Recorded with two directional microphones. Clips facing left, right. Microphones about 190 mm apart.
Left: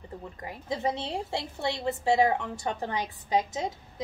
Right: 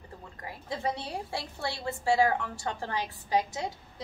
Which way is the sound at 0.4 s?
20° left (ahead or behind).